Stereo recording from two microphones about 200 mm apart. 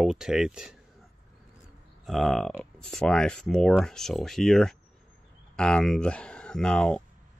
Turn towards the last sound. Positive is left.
turn(degrees=5)  # may be behind; listen again after turning